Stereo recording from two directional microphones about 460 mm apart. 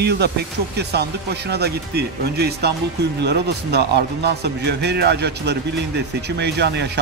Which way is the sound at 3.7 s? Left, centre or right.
Right.